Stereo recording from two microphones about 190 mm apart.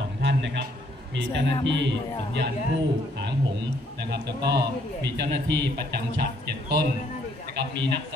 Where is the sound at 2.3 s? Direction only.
60° right (ahead or behind).